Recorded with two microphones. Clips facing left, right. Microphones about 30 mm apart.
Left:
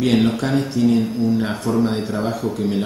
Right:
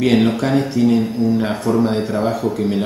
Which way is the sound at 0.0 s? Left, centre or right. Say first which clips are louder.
Right 2 dB; centre.